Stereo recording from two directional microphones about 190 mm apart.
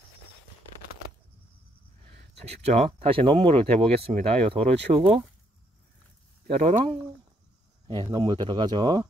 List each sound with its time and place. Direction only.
2.0 s speech: 35° right (ahead or behind)
6.4 s speech: 40° right (ahead or behind)
7.9 s speech: 20° right (ahead or behind)